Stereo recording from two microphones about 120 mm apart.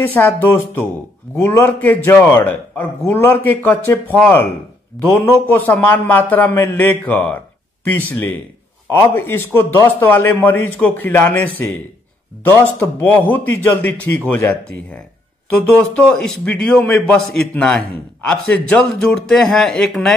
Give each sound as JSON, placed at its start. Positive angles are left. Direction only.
{"t": 0.0, "sound": "a man's voice", "side_deg": 15}
{"t": 12.7, "sound": "a man's voice", "side_deg": 15}
{"t": 16.0, "sound": "a man's voice", "side_deg": 10}